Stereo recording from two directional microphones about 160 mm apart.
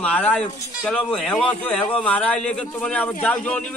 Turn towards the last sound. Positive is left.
turn(degrees=5)  # may be behind; listen again after turning